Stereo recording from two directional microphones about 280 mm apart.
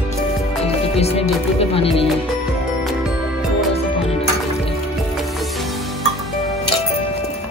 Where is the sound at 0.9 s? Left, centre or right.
Left.